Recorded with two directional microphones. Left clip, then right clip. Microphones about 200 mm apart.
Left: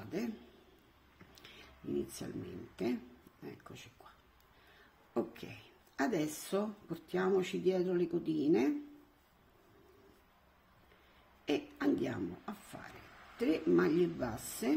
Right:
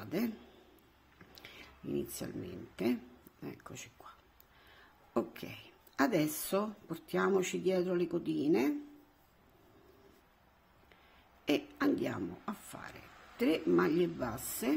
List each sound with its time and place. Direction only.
0.0 s a sound: 30° right (ahead or behind)
2.1 s speech: 25° right (ahead or behind)
5.1 s speech: 30° right (ahead or behind)
11.4 s speech: 25° right (ahead or behind)